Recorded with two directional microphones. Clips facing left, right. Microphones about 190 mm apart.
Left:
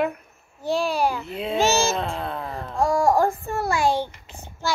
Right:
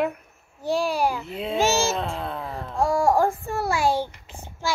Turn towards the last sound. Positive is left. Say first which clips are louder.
# left 1 dB
turn(degrees=-10)  # may be behind; listen again after turning